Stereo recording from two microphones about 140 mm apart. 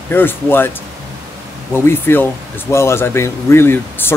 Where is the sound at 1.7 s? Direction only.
15° left (ahead or behind).